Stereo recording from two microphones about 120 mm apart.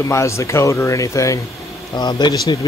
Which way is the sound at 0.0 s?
25° left (ahead or behind).